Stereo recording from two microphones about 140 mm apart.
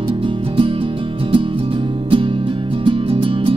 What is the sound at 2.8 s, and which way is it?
Music, 40° right (ahead or behind).